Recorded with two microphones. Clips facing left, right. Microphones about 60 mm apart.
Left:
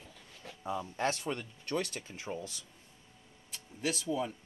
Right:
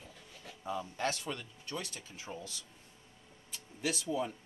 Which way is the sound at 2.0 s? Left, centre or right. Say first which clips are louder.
Left 4 dB; left.